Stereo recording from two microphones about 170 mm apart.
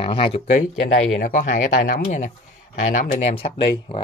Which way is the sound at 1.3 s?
50° left (ahead or behind).